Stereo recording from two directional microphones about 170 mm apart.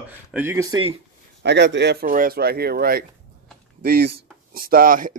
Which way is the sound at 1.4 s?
90° right.